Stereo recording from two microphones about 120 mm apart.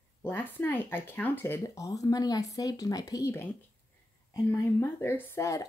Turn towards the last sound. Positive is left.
turn(degrees=25)  # may be behind; listen again after turning